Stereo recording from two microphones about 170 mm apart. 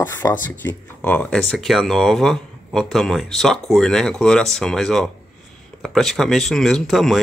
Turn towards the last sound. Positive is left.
turn(degrees=0)  # may be behind; listen again after turning